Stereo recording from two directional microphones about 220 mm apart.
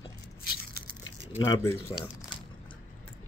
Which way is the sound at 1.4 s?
15° left (ahead or behind).